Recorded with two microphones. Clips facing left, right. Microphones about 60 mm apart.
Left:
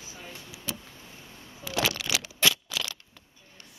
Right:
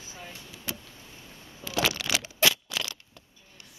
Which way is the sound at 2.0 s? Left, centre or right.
Centre.